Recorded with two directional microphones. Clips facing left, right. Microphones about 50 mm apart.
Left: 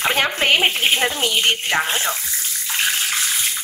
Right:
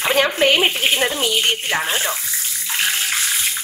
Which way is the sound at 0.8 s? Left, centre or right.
Centre.